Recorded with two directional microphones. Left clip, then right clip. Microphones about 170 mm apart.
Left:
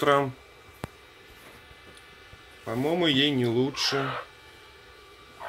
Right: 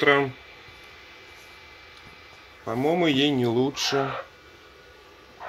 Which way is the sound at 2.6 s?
10° right (ahead or behind).